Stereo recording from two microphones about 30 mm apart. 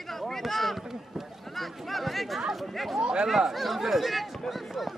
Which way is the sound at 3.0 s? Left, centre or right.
Right.